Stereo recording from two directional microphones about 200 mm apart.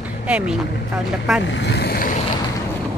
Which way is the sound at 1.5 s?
60° left (ahead or behind).